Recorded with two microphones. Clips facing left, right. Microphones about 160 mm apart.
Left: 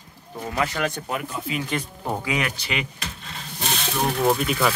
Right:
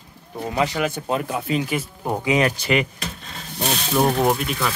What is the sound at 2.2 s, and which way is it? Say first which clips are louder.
Speech: right 9 dB; 25° right (ahead or behind).